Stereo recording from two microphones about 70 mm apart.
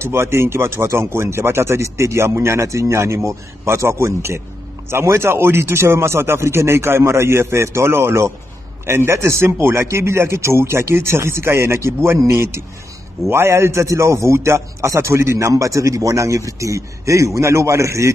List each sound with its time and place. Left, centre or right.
0.0 s a man's voice: right